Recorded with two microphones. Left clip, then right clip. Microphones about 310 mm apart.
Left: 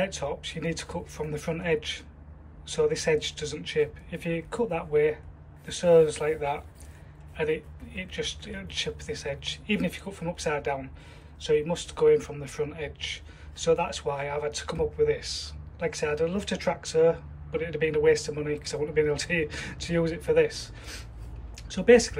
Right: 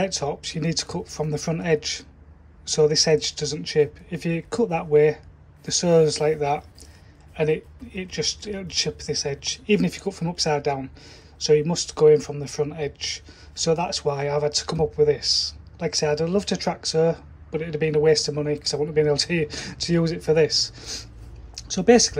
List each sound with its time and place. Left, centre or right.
0.0 s speech: centre